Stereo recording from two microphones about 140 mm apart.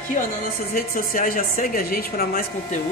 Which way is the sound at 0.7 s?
85° left.